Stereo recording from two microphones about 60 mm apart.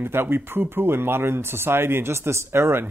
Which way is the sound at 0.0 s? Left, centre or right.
Right.